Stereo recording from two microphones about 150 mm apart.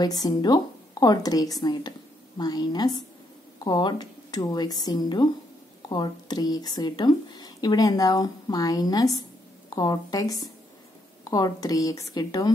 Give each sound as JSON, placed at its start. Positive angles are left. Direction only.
{"t": 0.0, "sound": "a woman's voice", "side_deg": 25}